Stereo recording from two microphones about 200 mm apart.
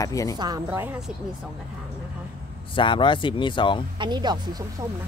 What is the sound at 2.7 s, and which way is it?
Speech, 25° left (ahead or behind).